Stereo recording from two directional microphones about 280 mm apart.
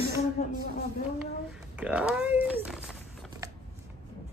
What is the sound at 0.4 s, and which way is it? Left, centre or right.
Speech, left.